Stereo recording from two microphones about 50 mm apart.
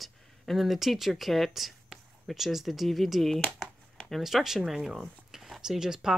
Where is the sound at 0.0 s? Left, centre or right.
Centre.